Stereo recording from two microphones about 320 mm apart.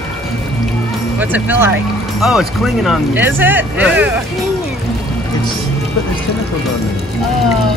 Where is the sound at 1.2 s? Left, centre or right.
Centre.